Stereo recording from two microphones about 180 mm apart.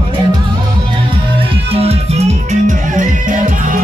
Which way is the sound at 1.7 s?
35° right (ahead or behind).